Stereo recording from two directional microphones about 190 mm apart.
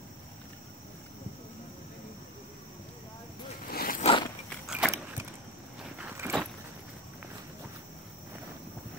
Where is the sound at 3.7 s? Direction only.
50° left (ahead or behind).